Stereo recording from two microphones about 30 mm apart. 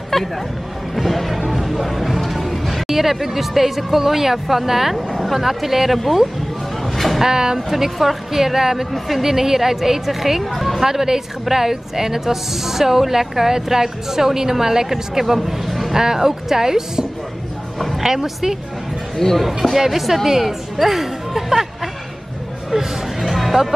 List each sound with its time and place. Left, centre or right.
0.1 s speech: centre
0.9 s music: centre
2.9 s a woman's voice: centre
4.9 s speech: centre
6.8 s a sound: centre
7.2 s speech: right
7.5 s a woman's voice: centre
10.9 s a woman's voice: centre
15.9 s a woman's voice: centre
17.7 s music: centre
18.0 s a woman's voice: centre
19.1 s speech: centre
19.4 s a woman's voice: centre
23.2 s music: centre